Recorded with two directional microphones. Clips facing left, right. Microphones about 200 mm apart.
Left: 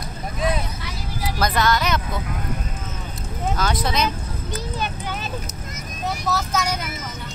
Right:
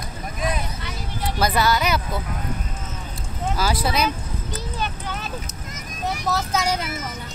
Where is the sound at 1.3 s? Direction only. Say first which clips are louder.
Even; 5° right (ahead or behind).